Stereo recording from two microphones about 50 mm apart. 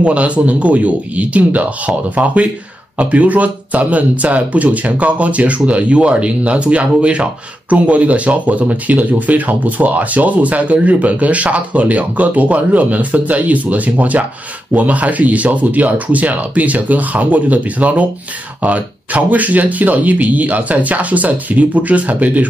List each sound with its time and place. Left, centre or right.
0.0 s speech: right